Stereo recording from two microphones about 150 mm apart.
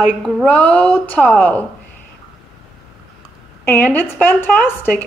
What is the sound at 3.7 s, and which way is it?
A woman's voice, 15° left (ahead or behind).